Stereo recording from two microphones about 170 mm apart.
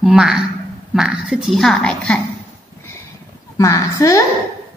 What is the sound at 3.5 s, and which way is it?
Speech, 20° left (ahead or behind).